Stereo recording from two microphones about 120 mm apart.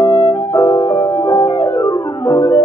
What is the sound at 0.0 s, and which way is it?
Music, 25° left (ahead or behind).